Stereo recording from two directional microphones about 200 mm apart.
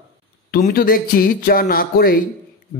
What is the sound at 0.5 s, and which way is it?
A man's voice, 45° left (ahead or behind).